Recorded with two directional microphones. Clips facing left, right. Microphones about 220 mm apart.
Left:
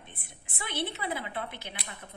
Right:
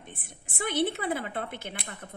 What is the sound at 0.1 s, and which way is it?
A woman's voice, 45° right (ahead or behind).